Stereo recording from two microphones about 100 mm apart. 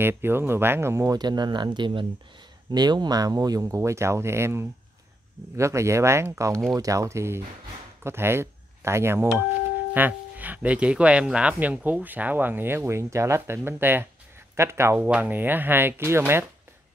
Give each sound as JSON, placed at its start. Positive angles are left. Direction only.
{"t": 0.0, "sound": "speech", "side_deg": -25}
{"t": 1.1, "sound": "speech", "side_deg": -45}